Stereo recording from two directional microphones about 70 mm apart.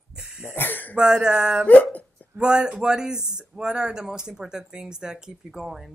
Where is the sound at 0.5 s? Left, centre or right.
Left.